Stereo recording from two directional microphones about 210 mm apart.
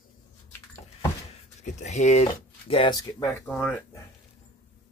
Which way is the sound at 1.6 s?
30° left (ahead or behind).